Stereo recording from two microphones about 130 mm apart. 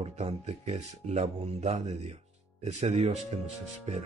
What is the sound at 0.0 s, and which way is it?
Speech, 55° right (ahead or behind).